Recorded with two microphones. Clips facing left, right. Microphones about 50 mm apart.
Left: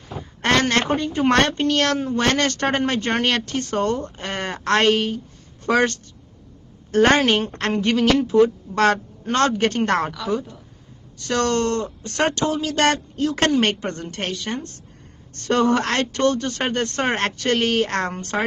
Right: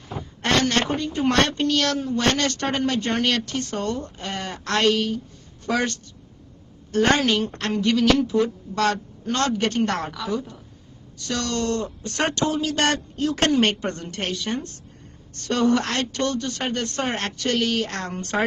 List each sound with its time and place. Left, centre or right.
0.2 s a woman's voice: left